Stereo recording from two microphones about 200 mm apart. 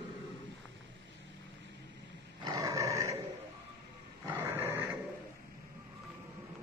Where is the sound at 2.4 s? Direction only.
20° right (ahead or behind).